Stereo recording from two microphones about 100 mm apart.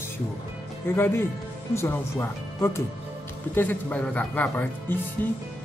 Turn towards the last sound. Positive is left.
turn(degrees=20)  # may be behind; listen again after turning